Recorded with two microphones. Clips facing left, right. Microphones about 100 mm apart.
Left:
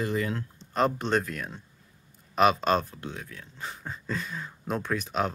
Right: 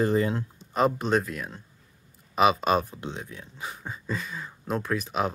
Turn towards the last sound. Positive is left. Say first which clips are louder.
# right 1 dB
turn(degrees=-5)  # may be behind; listen again after turning